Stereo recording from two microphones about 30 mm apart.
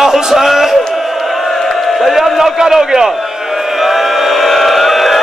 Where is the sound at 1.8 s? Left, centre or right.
Centre.